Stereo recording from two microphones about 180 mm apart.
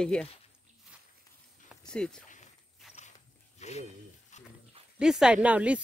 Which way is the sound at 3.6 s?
40° left (ahead or behind).